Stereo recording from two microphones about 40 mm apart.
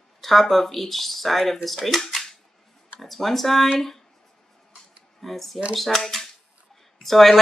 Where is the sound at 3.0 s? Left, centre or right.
Centre.